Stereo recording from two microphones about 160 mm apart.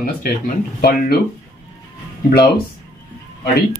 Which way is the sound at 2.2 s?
65° left (ahead or behind).